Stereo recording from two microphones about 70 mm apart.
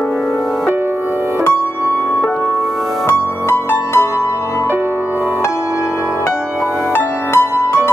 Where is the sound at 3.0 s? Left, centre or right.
Left.